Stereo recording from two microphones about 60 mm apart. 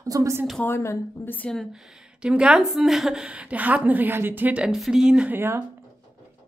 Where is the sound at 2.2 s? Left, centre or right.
Centre.